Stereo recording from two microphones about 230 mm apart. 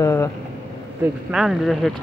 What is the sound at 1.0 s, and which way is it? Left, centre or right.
Speech, centre.